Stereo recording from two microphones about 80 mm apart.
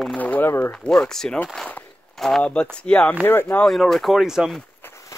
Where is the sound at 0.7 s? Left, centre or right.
Centre.